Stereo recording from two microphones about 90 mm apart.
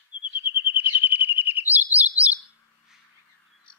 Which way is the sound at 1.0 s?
20° right (ahead or behind).